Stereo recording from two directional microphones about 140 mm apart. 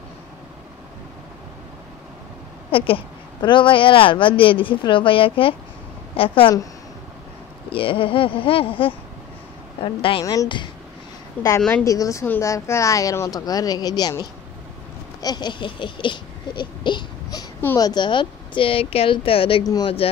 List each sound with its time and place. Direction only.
2.7 s speech: 40° left (ahead or behind)
7.7 s speech: 40° left (ahead or behind)
10.2 s speech: 25° left (ahead or behind)
11.4 s a woman's voice: 10° left (ahead or behind)
11.7 s speech: 25° left (ahead or behind)
15.1 s a sound: 30° left (ahead or behind)
17.7 s speech: 30° left (ahead or behind)
19.6 s speech: 25° left (ahead or behind)